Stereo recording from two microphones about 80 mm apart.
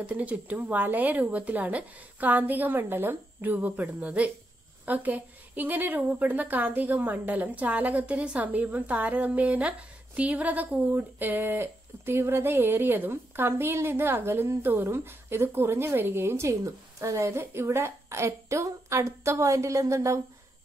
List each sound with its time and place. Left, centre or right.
0.0 s a woman's voice: centre; by 20.2 s right